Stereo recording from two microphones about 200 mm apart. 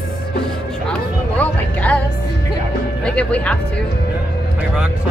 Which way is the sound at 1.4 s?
5° left (ahead or behind).